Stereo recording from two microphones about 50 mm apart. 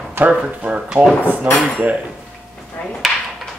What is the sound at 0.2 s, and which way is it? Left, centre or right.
Speech, right.